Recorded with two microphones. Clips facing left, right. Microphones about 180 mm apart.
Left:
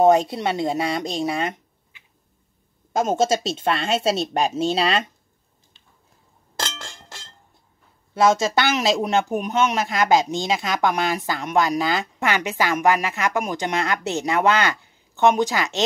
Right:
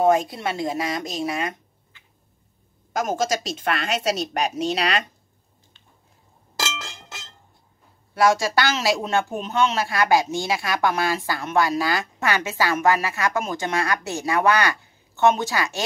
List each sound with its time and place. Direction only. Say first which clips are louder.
0.0 s speech: left 3 dB; 25° left (ahead or behind)
8.1 s speech: left 1 dB; 20° left (ahead or behind)